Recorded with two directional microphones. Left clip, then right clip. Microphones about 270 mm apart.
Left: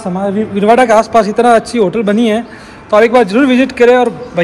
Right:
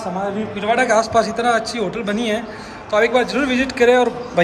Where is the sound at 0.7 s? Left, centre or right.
Centre.